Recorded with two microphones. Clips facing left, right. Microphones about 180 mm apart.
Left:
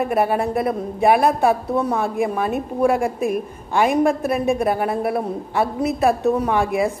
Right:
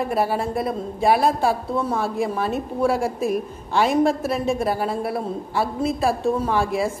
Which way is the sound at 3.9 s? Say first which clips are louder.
Left 1 dB; 55° left (ahead or behind).